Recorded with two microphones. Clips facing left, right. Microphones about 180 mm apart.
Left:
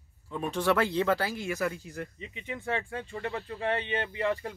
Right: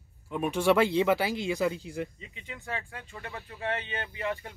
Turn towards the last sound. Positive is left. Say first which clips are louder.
# left 4 dB
turn(degrees=35)  # may be behind; listen again after turning